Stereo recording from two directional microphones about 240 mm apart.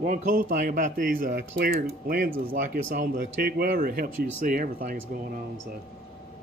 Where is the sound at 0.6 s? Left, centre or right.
Right.